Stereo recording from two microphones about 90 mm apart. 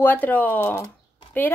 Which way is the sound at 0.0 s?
20° left (ahead or behind).